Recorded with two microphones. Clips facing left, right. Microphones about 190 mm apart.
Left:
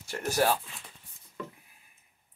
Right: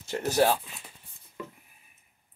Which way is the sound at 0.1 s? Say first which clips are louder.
Right 4 dB; 15° right (ahead or behind).